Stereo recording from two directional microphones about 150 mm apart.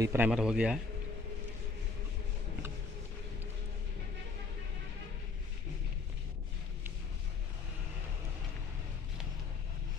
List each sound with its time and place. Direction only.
0.0 s a man's voice: 15° right (ahead or behind)
0.3 s a man's voice: 5° right (ahead or behind)